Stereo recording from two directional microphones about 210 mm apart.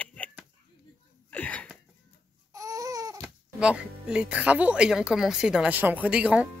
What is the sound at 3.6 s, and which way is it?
Speech, 5° right (ahead or behind).